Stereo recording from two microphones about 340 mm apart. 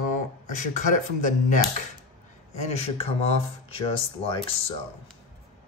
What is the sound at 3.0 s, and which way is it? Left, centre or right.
Speech, centre.